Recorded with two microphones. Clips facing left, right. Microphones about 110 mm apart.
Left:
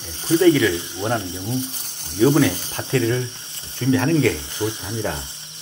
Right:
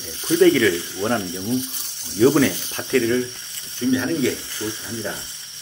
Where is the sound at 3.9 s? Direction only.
65° left (ahead or behind).